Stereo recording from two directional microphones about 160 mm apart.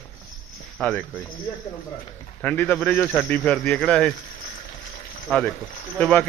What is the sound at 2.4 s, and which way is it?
A man's voice, 10° left (ahead or behind).